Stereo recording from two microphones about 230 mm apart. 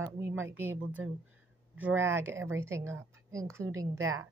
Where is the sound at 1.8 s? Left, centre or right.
Centre.